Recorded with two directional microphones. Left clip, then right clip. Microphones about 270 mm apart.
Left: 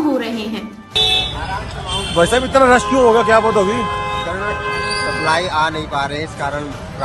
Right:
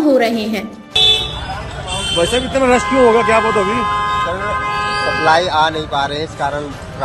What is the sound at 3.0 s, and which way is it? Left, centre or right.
Speech, left.